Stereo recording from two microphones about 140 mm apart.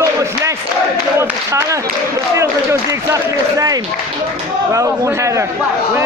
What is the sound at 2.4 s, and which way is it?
A man's voice, 20° right (ahead or behind).